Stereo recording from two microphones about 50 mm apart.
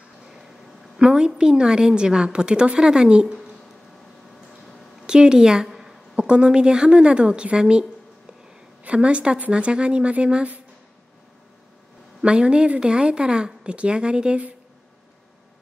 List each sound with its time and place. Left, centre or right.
0.9 s a woman's voice: centre
5.0 s a woman's voice: centre
6.1 s speech: right
8.8 s speech: right
12.2 s speech: centre